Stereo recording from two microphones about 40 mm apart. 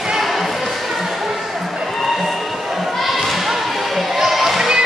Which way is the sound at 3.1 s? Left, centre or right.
Centre.